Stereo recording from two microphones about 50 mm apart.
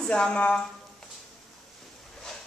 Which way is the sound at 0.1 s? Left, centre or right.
Centre.